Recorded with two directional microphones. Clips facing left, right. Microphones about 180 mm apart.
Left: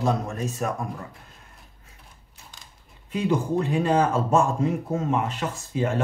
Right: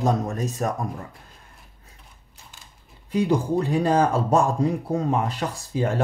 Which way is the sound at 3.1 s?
35° right (ahead or behind).